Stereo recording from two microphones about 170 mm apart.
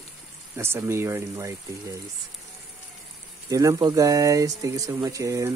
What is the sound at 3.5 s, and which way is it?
Speech, 20° right (ahead or behind).